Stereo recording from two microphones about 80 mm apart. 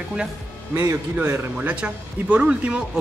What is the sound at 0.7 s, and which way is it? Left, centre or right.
Speech, right.